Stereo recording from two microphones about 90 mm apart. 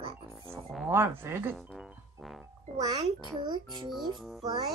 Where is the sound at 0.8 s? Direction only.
25° right (ahead or behind).